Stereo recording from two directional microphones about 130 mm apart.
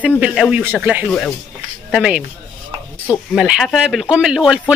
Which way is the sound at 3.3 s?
5° right (ahead or behind).